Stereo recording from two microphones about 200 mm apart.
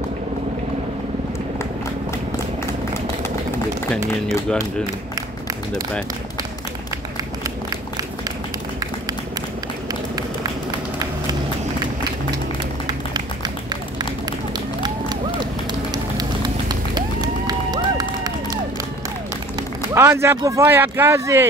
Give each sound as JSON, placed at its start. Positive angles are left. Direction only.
{"t": 15.9, "sound": "run", "side_deg": -20}
{"t": 19.9, "sound": "speech", "side_deg": -15}